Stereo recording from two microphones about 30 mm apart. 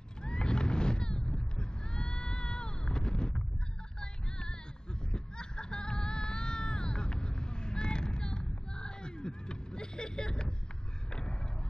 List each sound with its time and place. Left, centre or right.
0.2 s boat: left
1.6 s sheep: left
2.9 s wind noise: left
4.0 s music: left
8.4 s a sound: left